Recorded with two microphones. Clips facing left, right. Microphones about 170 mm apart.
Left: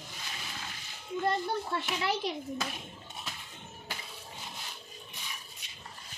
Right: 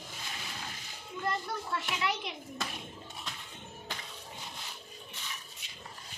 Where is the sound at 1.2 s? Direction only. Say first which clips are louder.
Left 4 dB; 30° left (ahead or behind).